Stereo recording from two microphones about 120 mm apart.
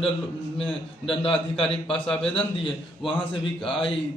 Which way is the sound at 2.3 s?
45° left (ahead or behind).